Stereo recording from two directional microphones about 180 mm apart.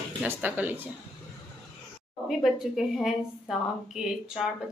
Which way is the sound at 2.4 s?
Centre (ahead or behind).